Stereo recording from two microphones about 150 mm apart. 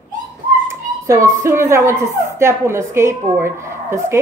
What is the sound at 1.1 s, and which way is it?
A woman's voice, 20° right (ahead or behind).